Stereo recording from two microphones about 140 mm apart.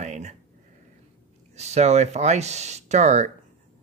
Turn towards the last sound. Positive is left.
turn(degrees=-55)  # may be behind; listen again after turning